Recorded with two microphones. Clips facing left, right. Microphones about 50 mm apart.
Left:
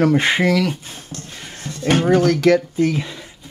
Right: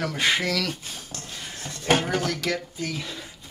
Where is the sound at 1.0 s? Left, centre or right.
Centre.